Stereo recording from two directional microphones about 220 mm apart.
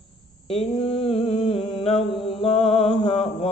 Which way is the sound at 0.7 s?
25° left (ahead or behind).